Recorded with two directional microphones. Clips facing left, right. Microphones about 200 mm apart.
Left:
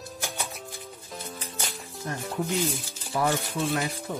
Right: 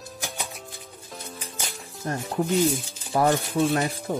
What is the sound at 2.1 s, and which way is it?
Speech, 40° right (ahead or behind).